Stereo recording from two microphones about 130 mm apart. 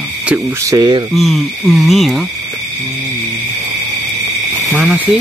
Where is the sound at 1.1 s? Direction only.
Centre (ahead or behind).